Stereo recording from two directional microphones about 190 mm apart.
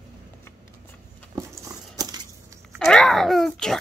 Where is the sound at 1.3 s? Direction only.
15° right (ahead or behind).